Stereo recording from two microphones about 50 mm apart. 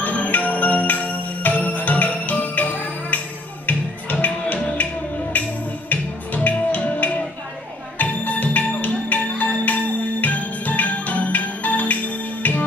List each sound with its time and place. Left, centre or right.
0.0 s music: left